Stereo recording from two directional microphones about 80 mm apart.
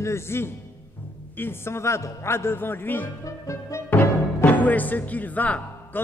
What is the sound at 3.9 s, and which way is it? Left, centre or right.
A man's voice, left.